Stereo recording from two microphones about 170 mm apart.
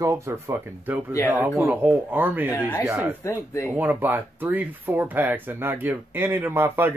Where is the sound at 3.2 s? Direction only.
15° left (ahead or behind).